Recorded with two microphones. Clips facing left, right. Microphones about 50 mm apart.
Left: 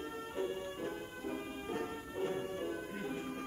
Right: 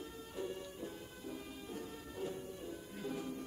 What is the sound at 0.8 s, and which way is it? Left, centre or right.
Music, left.